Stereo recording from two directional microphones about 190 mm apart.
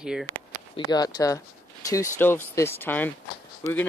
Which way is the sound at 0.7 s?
20° left (ahead or behind).